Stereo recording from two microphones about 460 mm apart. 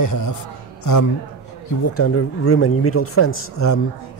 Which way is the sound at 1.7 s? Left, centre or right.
Left.